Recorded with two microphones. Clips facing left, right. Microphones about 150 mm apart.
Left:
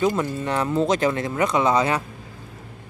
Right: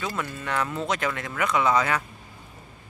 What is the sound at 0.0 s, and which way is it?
Speech, 30° left (ahead or behind).